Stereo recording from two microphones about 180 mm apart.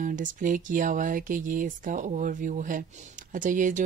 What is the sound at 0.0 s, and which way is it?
Speech, 45° right (ahead or behind).